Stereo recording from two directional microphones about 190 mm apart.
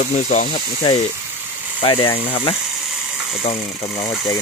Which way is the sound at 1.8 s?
30° left (ahead or behind).